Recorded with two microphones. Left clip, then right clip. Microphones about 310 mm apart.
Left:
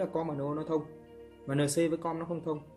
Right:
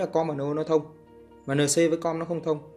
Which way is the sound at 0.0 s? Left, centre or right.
Centre.